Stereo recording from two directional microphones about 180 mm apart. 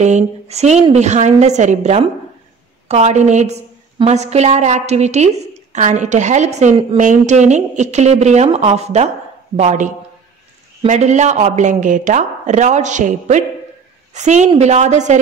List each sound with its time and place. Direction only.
0.0 s a woman's voice: 40° right (ahead or behind)